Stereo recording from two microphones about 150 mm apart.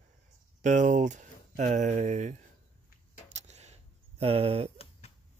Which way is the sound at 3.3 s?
50° right (ahead or behind).